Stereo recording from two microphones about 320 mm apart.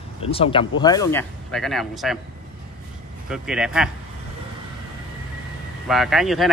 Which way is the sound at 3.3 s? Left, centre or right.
Centre.